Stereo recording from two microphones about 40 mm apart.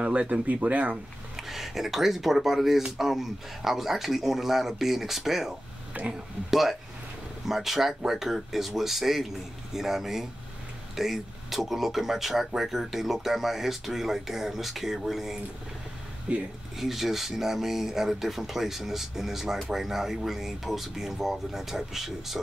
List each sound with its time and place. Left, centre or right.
0.0 s speech: right
0.5 s speech: right
1.3 s speech: centre
5.9 s speech: right
6.5 s speech: centre
16.3 s speech: right
16.7 s speech: centre